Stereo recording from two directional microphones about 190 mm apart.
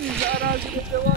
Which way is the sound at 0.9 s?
50° right (ahead or behind).